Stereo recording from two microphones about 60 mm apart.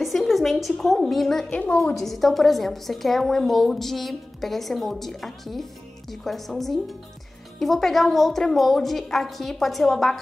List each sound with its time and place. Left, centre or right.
0.0 s a woman's voice: centre
1.5 s a woman's voice: left
2.0 s a woman's voice: centre